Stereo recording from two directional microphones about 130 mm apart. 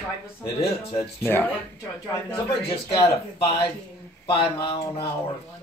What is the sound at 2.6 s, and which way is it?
Speech, 45° left (ahead or behind).